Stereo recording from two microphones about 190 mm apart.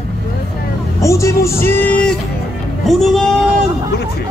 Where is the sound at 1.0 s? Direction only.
15° left (ahead or behind).